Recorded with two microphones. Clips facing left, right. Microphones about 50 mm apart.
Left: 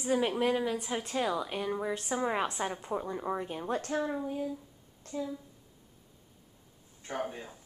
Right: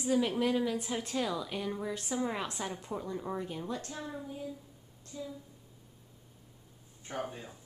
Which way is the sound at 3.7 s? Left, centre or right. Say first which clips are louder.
Left 8 dB; left.